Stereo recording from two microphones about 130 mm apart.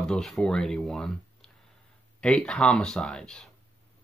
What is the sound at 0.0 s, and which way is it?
Speech, 5° left (ahead or behind).